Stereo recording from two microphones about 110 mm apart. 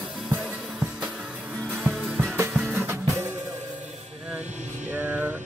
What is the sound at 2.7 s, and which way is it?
Music, 20° right (ahead or behind).